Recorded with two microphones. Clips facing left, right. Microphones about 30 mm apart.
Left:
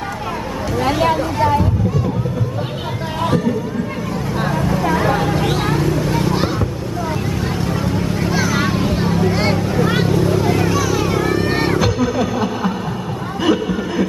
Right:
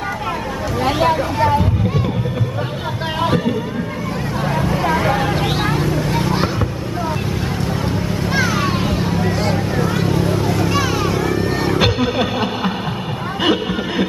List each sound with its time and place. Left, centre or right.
0.7 s speech: centre
3.2 s music: right
4.8 s a sound: centre
7.8 s boat: right
9.3 s a sound: left
10.0 s vehicle: centre
10.4 s vehicle: centre
10.7 s vehicle: right
11.4 s music: left
11.8 s a sound: right